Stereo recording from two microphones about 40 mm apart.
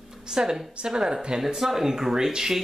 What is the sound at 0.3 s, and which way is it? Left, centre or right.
Speech, centre.